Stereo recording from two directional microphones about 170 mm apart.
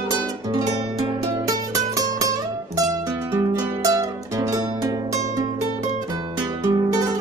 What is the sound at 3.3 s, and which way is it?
Music, 15° right (ahead or behind).